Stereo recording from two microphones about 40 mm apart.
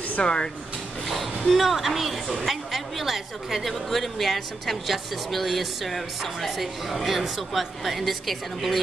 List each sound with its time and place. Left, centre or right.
0.2 s speech: left
1.0 s a sound: centre
1.5 s speech: centre